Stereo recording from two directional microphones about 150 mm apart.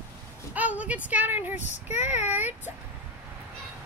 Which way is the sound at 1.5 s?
50° left (ahead or behind).